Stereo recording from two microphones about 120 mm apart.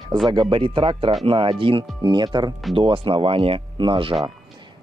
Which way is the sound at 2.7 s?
50° right (ahead or behind).